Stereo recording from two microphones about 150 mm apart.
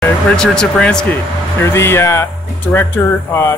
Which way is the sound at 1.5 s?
15° left (ahead or behind).